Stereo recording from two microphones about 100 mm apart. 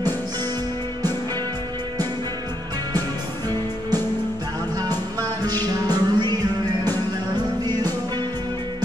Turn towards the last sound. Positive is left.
turn(degrees=-40)  # may be behind; listen again after turning